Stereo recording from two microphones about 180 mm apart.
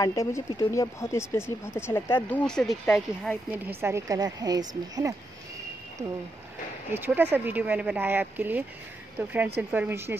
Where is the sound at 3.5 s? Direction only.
15° right (ahead or behind).